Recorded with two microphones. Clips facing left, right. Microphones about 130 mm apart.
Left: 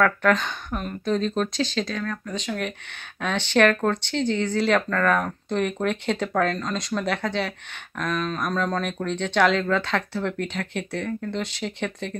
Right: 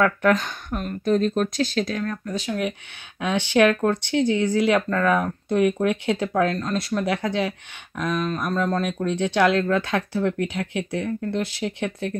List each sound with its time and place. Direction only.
0.0 s speech: 5° right (ahead or behind)